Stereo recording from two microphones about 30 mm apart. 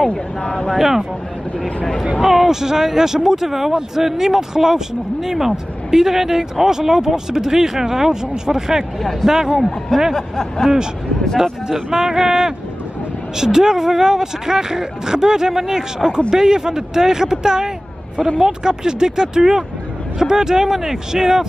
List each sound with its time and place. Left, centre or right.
0.1 s a sound: left
0.7 s speech: centre
2.2 s speech: centre
9.2 s speech: centre
11.9 s speech: centre